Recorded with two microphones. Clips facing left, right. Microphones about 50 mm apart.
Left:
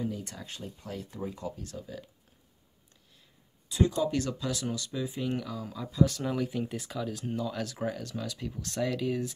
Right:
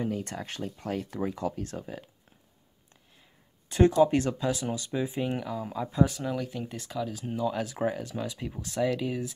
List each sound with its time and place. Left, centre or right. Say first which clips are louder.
0.0 s speech: right 4 dB; right
1.6 s speech: right 4 dB; right
3.6 s speech: right 7 dB; right
6.2 s speech: left 1 dB; centre; by 8.6 s right
8.6 s speech: right 2 dB; centre